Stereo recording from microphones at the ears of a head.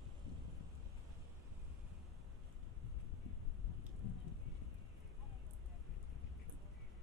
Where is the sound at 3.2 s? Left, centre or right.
Left.